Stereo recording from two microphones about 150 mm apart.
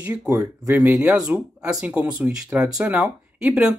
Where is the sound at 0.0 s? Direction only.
10° right (ahead or behind).